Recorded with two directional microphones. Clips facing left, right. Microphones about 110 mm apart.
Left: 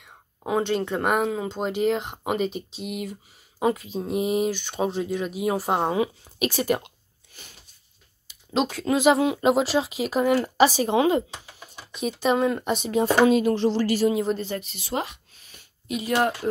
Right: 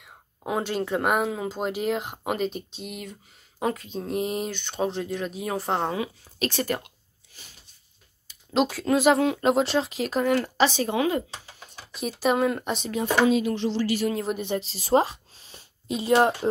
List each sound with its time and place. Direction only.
0.4 s speech: centre (ahead or behind)
7.3 s a sound: 60° left (ahead or behind)
8.5 s speech: centre (ahead or behind)
10.9 s speech: 25° left (ahead or behind)
11.7 s speech: centre (ahead or behind)
13.3 s speech: 45° left (ahead or behind)
14.4 s speech: 25° right (ahead or behind)